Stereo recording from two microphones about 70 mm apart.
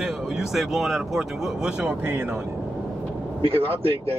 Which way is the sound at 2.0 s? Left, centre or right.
Centre.